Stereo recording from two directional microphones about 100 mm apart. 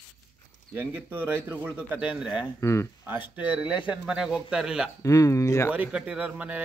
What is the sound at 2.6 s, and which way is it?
Speech, 25° left (ahead or behind).